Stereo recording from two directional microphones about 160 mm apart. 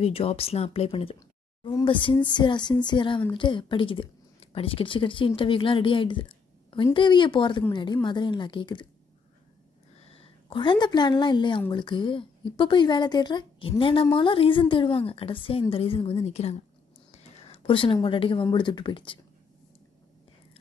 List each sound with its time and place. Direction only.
0.0 s speech: 40° left (ahead or behind)
1.6 s speech: 20° left (ahead or behind)
1.9 s speech: 30° left (ahead or behind)
10.0 s a woman's voice: 35° left (ahead or behind)
17.1 s a sound: 40° left (ahead or behind)
18.0 s speech: 35° left (ahead or behind)